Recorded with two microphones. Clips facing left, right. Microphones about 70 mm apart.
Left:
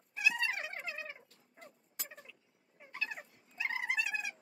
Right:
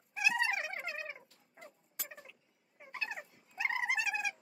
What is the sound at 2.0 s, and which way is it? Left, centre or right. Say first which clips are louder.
Vehicle: right 1 dB; centre.